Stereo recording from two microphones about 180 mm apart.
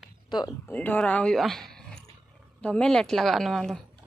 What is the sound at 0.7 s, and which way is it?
Speech, 10° left (ahead or behind).